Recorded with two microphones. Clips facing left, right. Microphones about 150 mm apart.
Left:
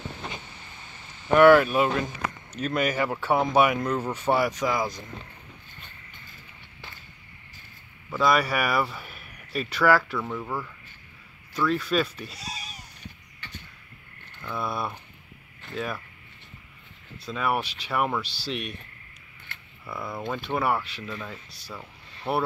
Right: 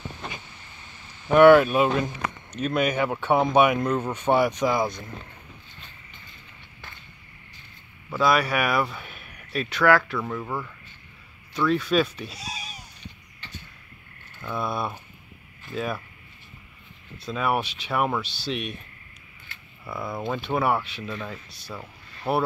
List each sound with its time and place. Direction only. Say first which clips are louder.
1.4 s speech: right 2 dB; 15° right (ahead or behind)
3.1 s speech: right 2 dB; 5° left (ahead or behind)
3.3 s speech: right 2 dB; 20° right (ahead or behind)
8.1 s speech: right 1 dB; centre (ahead or behind)
12.4 s crow: right 2 dB; centre (ahead or behind)
14.4 s speech: right 2 dB; 15° right (ahead or behind)
17.3 s speech: right 2 dB; 5° right (ahead or behind)
17.6 s speech: right 2 dB; 20° right (ahead or behind)
17.9 s speech: right 2 dB; 5° right (ahead or behind)
18.2 s speech: right 2 dB; 20° right (ahead or behind)
19.9 s speech: right 2 dB; 10° right (ahead or behind)
21.1 s speech: right 3 dB; 5° right (ahead or behind)
21.7 s a sound: right 2 dB; 5° right (ahead or behind)